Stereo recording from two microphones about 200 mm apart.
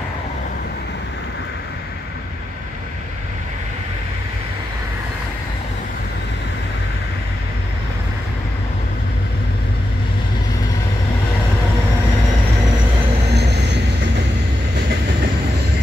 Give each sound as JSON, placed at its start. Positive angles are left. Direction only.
{"t": 13.3, "sound": "vehicle", "side_deg": -55}